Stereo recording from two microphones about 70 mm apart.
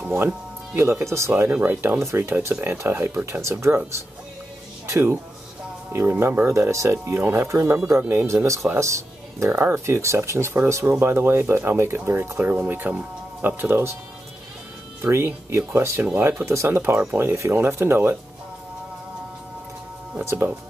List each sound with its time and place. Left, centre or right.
0.7 s speech: right
1.5 s speech: right
2.0 s speech: right
4.8 s speech: right
12.4 s speech: right
15.0 s speech: right
20.2 s speech: right